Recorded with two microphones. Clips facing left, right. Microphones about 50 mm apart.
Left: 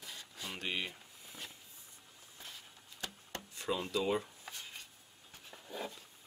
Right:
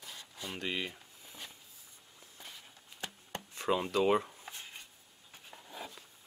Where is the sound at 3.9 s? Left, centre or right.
Right.